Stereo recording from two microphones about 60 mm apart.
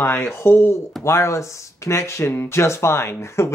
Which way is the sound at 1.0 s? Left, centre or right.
Left.